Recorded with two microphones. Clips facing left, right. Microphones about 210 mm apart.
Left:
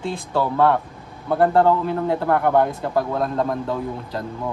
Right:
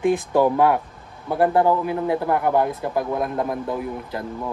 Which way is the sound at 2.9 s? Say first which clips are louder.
Left 3 dB; 20° right (ahead or behind).